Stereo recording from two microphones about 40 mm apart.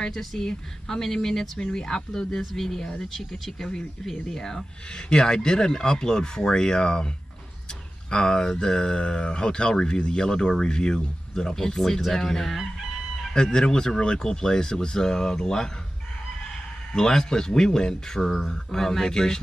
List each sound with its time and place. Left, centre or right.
0.0 s speech: centre
8.1 s speech: centre
16.9 s speech: centre